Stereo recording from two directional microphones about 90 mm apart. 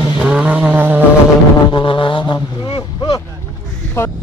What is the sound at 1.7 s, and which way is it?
Speech, 70° left (ahead or behind).